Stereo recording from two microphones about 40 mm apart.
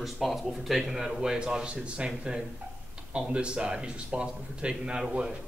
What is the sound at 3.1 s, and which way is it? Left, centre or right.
A man's voice, right.